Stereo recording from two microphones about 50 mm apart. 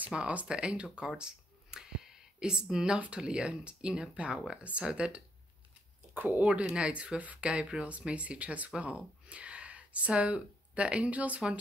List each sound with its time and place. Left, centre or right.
0.1 s speech: right
6.1 s speech: right
6.7 s speech: right